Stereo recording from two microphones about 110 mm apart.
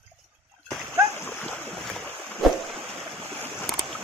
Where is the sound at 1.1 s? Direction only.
20° left (ahead or behind).